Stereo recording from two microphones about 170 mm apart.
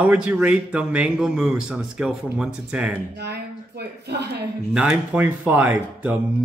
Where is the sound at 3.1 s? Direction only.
75° right (ahead or behind).